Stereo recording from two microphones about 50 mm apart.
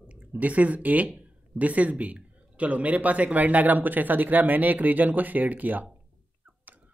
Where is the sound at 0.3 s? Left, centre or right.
Right.